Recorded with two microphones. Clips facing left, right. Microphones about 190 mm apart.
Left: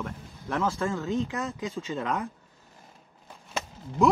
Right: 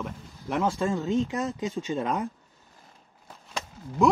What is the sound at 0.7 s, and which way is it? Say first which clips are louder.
Speech: right 3 dB; 15° right (ahead or behind).